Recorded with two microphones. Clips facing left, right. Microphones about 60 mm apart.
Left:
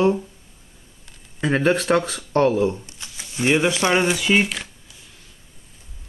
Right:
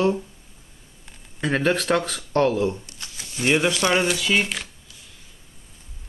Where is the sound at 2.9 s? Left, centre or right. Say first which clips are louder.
Even; centre.